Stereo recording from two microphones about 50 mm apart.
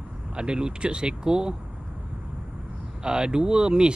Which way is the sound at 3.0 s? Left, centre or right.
Centre.